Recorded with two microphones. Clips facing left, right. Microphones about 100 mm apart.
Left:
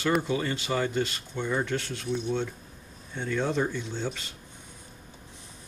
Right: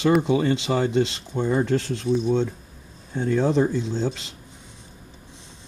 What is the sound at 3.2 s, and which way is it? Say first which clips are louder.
Speech: right 7 dB; 40° right (ahead or behind).